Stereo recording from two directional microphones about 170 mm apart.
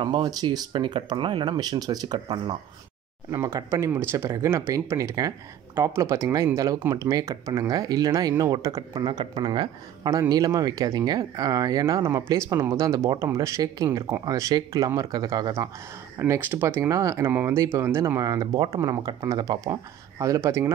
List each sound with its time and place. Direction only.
0.0 s speech: 25° right (ahead or behind)
3.3 s speech: 15° right (ahead or behind)